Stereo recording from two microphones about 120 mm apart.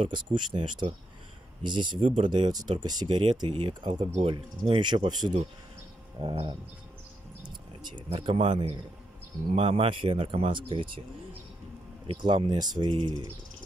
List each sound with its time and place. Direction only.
0.0 s speech: 40° right (ahead or behind)
9.5 s speech: 55° right (ahead or behind)
12.1 s speech: 45° right (ahead or behind)